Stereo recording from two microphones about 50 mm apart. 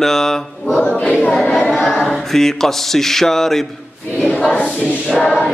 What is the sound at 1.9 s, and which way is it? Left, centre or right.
Choir, centre.